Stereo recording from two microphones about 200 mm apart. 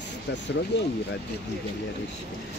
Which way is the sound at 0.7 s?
60° left (ahead or behind).